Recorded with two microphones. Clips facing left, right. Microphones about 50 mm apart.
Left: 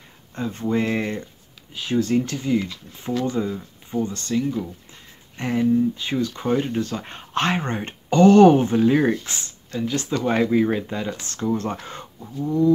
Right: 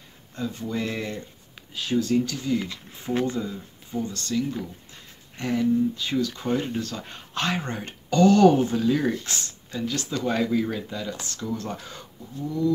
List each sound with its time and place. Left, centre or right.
0.4 s speech: left
3.1 s speech: right
3.3 s speech: left
9.2 s speech: left